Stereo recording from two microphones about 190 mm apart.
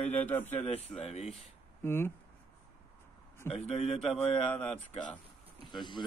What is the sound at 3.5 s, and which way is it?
Speech, 35° left (ahead or behind).